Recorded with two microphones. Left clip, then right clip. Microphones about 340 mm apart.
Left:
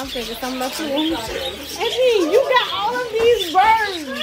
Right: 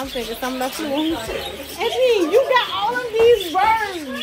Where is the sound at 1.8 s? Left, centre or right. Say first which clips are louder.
Even; centre.